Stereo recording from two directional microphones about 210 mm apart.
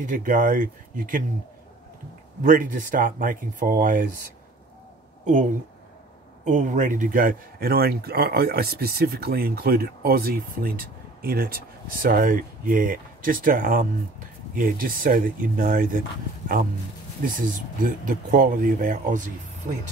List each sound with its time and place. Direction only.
0.0 s a man's voice: 40° right (ahead or behind)
2.4 s a man's voice: 40° right (ahead or behind)
5.2 s a man's voice: 35° right (ahead or behind)
17.2 s a man's voice: 40° right (ahead or behind)